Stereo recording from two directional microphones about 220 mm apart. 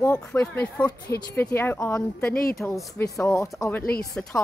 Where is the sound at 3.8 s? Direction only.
45° left (ahead or behind).